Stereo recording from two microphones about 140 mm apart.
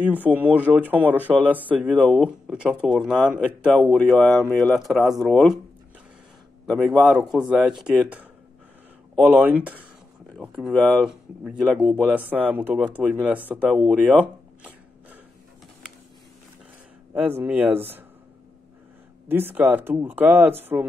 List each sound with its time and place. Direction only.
0.0 s speech: 10° right (ahead or behind)
6.6 s speech: centre (ahead or behind)
10.7 s speech: 5° left (ahead or behind); by 13.7 s 10° right (ahead or behind)
13.7 s a sound: centre (ahead or behind)
17.1 s speech: 15° right (ahead or behind)
19.2 s speech: 15° right (ahead or behind)